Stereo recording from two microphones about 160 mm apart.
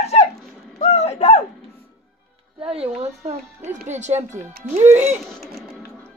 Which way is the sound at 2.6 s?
35° right (ahead or behind).